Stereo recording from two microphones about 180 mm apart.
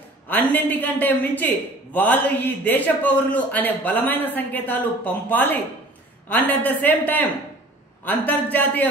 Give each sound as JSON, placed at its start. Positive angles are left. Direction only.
{"t": 0.3, "sound": "a man's voice", "side_deg": 10}